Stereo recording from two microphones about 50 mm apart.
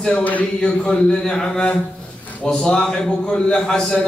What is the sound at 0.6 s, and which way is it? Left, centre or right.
Speech, centre.